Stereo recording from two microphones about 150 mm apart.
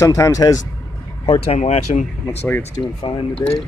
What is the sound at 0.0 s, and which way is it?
Speech, 20° left (ahead or behind).